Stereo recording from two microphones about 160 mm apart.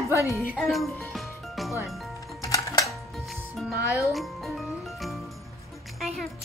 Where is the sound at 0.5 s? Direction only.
Centre (ahead or behind).